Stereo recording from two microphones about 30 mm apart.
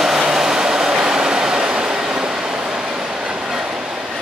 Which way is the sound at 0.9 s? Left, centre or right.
Right.